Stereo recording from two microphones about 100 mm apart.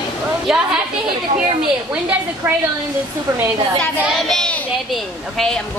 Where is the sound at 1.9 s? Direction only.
15° right (ahead or behind).